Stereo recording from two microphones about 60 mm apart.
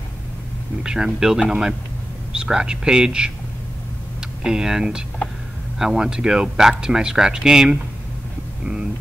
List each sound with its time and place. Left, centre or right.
0.8 s speech: centre
4.4 s speech: centre